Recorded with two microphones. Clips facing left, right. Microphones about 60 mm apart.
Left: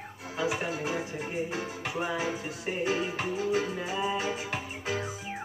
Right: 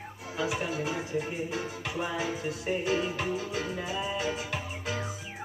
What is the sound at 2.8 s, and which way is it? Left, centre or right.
Music, left.